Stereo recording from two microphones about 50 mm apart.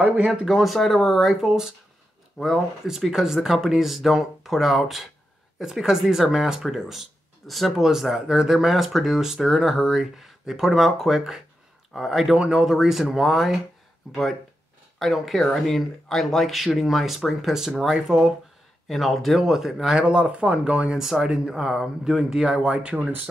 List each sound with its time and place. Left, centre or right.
0.0 s speech: centre
0.5 s speech: centre
15.0 s speech: centre
18.9 s speech: centre
19.4 s speech: centre
21.0 s speech: centre